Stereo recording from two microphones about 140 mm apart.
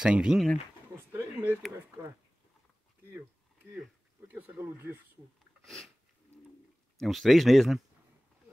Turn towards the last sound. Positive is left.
turn(degrees=0)  # may be behind; listen again after turning